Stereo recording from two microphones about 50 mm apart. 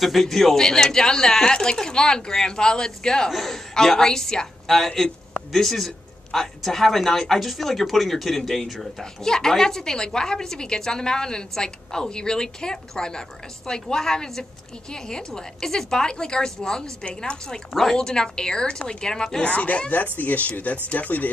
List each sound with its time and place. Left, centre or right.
0.0 s speech: centre
5.5 s a sound: centre
6.6 s speech: centre
19.4 s speech: left